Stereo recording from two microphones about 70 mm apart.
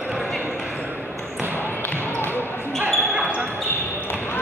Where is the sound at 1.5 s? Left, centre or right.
Left.